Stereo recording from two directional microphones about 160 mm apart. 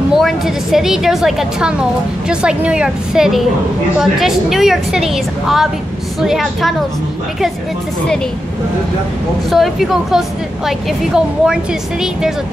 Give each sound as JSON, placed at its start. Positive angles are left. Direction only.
{"t": 0.1, "sound": "a woman's voice", "side_deg": 0}
{"t": 9.5, "sound": "a woman's voice", "side_deg": 0}